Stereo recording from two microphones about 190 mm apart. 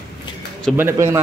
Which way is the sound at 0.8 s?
15° right (ahead or behind).